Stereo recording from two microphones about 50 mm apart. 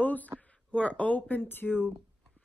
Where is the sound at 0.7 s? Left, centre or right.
Left.